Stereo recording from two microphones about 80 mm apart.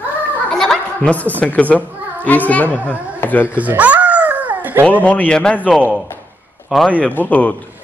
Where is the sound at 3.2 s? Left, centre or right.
Left.